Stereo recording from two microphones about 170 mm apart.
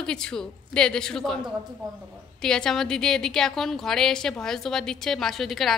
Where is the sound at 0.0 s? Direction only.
5° left (ahead or behind).